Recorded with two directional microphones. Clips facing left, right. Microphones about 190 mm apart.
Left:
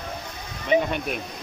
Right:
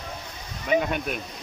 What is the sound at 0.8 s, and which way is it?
Speech, centre (ahead or behind).